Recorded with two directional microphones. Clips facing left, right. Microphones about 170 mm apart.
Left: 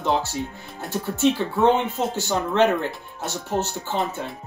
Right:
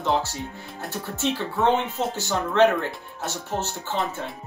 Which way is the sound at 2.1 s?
15° left (ahead or behind).